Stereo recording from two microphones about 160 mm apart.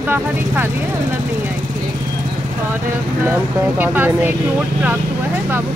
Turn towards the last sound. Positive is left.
turn(degrees=-10)  # may be behind; listen again after turning